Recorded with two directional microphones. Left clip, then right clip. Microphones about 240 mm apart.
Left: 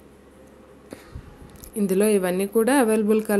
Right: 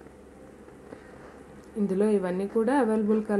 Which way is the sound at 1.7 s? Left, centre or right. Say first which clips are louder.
Left 5 dB; left.